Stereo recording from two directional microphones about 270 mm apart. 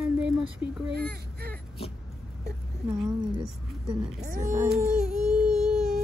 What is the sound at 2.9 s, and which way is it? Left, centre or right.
Speech, centre.